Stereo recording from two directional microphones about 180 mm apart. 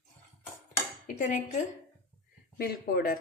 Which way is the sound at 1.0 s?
45° left (ahead or behind).